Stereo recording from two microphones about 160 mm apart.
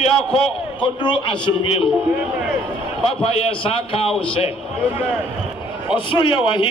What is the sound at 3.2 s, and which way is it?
Speech, 35° left (ahead or behind).